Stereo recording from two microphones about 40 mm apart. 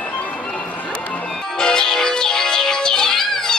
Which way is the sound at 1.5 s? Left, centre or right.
Centre.